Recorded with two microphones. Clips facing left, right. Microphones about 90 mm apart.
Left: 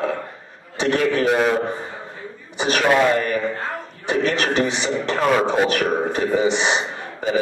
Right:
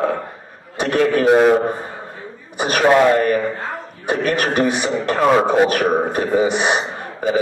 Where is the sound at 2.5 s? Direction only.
50° right (ahead or behind).